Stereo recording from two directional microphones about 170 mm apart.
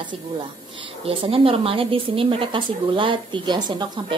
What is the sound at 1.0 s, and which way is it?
A woman's voice, 35° right (ahead or behind).